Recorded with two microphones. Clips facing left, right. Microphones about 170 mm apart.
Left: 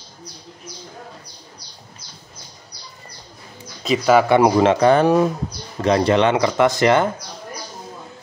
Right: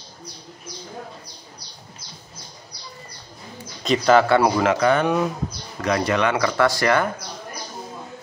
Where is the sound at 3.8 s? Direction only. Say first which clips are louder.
Left 1 dB; 5° left (ahead or behind); by 7.1 s 20° left (ahead or behind).